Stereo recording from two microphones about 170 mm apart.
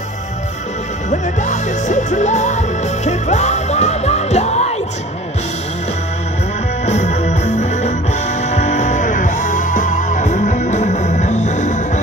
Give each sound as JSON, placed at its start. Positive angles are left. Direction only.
{"t": 1.1, "sound": "music", "side_deg": 45}
{"t": 6.9, "sound": "music", "side_deg": 45}